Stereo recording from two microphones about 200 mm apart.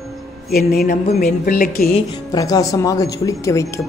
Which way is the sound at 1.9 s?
30° left (ahead or behind).